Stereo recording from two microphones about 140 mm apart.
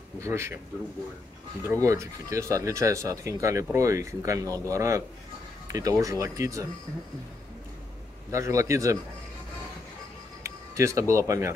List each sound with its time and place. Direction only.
0.2 s speech: 20° right (ahead or behind)
1.7 s speech: 20° right (ahead or behind)
8.3 s speech: 20° right (ahead or behind)
10.4 s speech: 20° right (ahead or behind)